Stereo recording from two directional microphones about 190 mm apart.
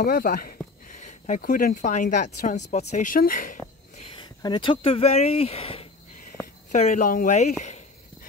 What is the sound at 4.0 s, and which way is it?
Speech, 30° left (ahead or behind).